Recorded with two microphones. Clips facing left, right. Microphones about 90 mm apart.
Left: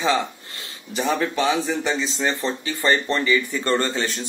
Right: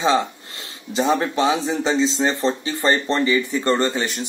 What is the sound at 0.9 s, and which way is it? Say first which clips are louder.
Speech: right 3 dB; 30° right (ahead or behind).